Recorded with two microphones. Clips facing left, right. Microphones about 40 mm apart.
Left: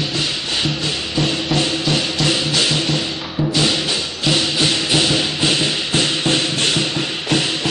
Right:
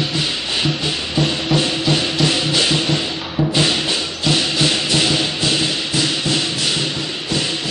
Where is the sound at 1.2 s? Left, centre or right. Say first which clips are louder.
Right 1 dB; centre.